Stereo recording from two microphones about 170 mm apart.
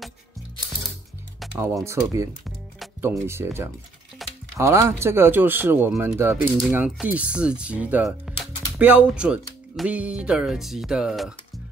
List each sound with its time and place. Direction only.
1.4 s music: centre (ahead or behind)
2.0 s speech: 15° right (ahead or behind)
4.2 s music: centre (ahead or behind)
4.6 s speech: 15° right (ahead or behind); by 11.6 s centre (ahead or behind)